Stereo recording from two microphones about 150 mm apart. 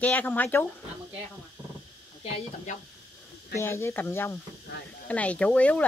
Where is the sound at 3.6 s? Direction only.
20° left (ahead or behind).